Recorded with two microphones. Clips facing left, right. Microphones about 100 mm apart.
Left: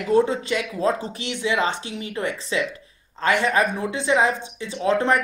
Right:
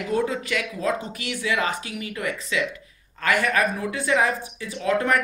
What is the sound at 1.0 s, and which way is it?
A woman's voice, 30° left (ahead or behind).